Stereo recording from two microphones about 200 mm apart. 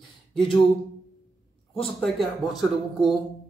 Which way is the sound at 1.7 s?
Centre (ahead or behind).